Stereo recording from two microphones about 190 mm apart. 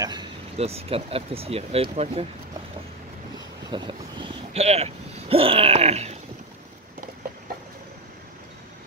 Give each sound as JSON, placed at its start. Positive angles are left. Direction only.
{"t": 0.0, "sound": "speech", "side_deg": -25}
{"t": 3.7, "sound": "vehicle", "side_deg": -25}